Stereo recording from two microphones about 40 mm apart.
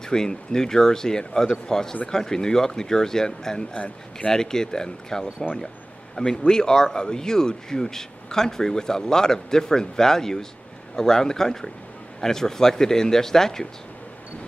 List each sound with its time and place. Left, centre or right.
0.0 s speech: centre
3.7 s speech: left
4.3 s speech: centre